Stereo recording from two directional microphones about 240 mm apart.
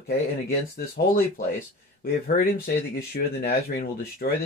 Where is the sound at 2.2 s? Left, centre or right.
Left.